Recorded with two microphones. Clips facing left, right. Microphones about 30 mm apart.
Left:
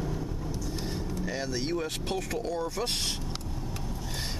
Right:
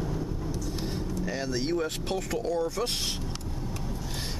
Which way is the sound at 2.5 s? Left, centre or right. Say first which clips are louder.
Right 4 dB; centre.